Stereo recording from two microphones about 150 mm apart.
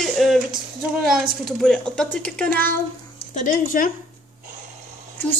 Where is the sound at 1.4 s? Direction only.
5° left (ahead or behind).